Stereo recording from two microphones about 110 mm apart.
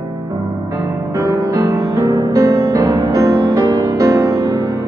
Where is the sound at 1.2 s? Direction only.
30° right (ahead or behind).